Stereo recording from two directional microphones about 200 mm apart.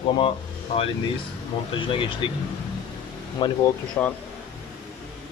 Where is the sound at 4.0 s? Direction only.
10° left (ahead or behind).